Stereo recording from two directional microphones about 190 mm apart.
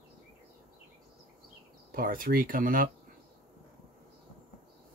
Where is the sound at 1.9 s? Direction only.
50° right (ahead or behind).